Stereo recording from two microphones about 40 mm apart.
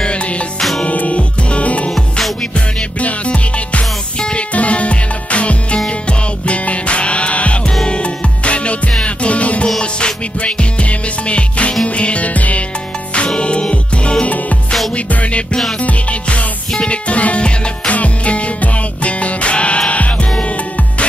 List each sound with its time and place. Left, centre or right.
0.0 s music: left
1.9 s music: centre
2.5 s music: left
14.2 s music: left